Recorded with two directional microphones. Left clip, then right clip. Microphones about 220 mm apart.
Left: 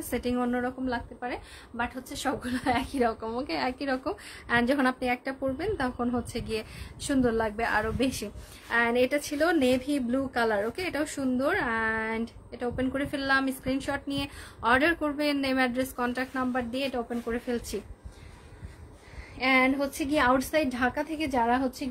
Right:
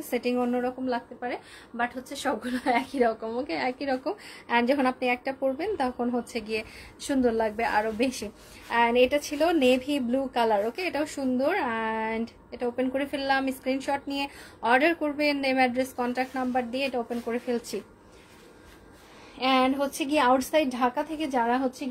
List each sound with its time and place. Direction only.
0.0 s a woman's voice: 15° left (ahead or behind)
19.6 s a woman's voice: 10° left (ahead or behind)